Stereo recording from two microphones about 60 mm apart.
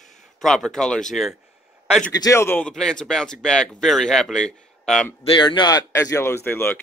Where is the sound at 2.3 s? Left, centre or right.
Left.